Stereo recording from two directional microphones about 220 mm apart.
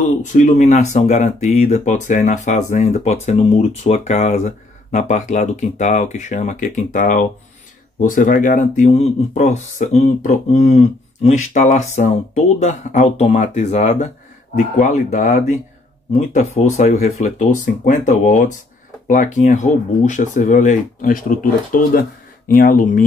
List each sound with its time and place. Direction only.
0.0 s speech: 35° left (ahead or behind)